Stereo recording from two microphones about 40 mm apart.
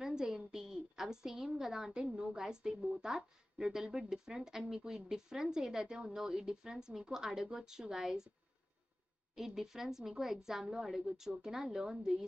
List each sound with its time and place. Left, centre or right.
0.0 s a sound: centre
2.1 s a woman's voice: centre
9.3 s a woman's voice: centre